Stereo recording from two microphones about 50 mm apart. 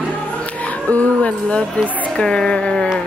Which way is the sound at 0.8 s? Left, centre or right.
Left.